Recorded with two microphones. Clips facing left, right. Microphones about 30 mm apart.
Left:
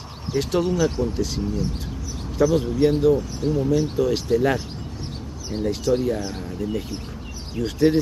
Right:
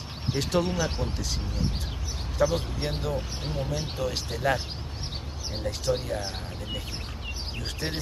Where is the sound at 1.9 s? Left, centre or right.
Right.